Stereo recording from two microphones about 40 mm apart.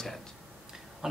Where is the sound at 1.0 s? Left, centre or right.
Centre.